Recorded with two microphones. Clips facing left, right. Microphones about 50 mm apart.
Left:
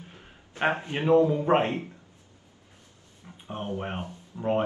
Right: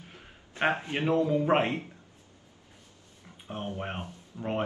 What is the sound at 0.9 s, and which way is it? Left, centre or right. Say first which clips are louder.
Speech: left 10 dB; left.